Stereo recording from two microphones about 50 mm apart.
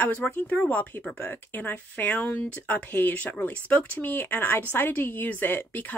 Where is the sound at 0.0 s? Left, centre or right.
Left.